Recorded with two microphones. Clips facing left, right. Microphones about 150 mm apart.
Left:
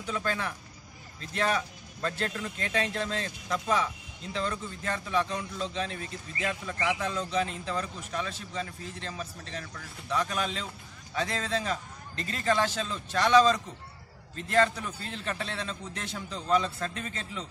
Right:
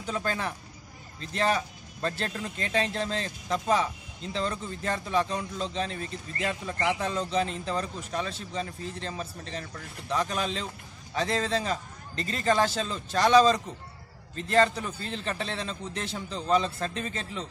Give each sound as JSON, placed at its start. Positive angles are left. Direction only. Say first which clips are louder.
{"t": 0.1, "sound": "speech", "louder": "right 1 dB", "side_deg": -35}